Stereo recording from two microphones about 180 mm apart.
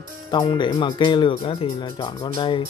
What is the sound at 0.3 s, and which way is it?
Speech, 25° left (ahead or behind).